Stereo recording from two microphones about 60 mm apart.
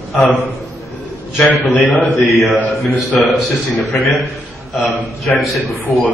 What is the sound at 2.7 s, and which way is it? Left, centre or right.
A man's voice, centre.